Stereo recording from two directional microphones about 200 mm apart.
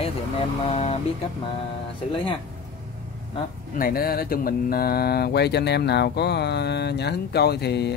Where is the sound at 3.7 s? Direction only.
45° left (ahead or behind).